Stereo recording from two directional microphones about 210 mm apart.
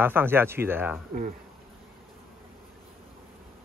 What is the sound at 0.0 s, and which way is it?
Speech, 10° right (ahead or behind).